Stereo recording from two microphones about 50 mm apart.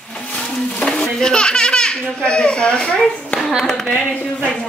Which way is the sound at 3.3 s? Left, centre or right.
Left.